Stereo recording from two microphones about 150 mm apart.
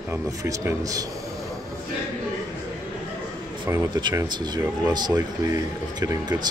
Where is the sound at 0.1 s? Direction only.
20° right (ahead or behind).